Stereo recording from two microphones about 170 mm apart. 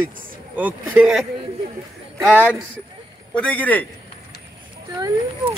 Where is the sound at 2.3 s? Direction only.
10° right (ahead or behind).